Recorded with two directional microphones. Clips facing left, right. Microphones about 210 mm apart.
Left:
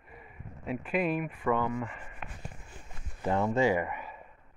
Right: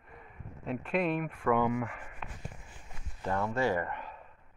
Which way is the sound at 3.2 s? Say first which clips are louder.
Left 4 dB; 20° left (ahead or behind).